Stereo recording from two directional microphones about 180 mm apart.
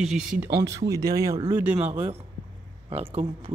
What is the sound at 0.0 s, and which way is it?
Speech, 5° right (ahead or behind).